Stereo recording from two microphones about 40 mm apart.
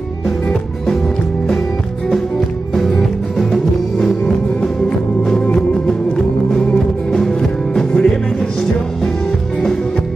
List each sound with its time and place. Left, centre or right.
2.7 s music: centre
5.2 s music: centre
7.2 s music: centre
7.9 s music: left